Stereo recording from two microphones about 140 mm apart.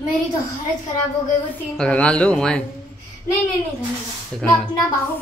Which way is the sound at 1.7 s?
5° left (ahead or behind).